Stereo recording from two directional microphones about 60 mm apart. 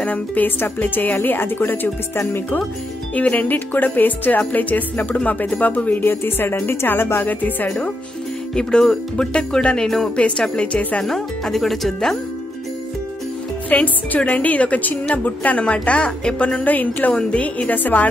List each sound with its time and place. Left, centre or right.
0.0 s a woman's voice: left
3.2 s a woman's voice: left
8.5 s music: centre
10.1 s a woman's voice: centre
11.1 s music: centre
13.7 s a woman's voice: left